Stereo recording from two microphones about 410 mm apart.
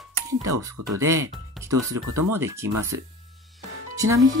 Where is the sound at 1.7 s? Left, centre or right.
Right.